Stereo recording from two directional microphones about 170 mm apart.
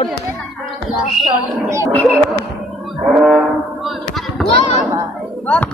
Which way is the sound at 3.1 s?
Centre (ahead or behind).